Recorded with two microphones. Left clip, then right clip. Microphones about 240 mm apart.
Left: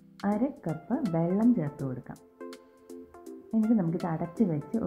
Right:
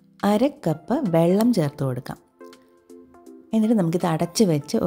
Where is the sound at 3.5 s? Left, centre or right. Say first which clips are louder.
Right 7 dB; right.